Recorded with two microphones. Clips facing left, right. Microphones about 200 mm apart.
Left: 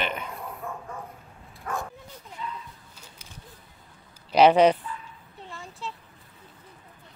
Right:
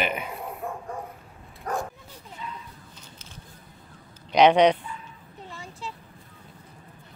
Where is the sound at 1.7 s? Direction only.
40° right (ahead or behind).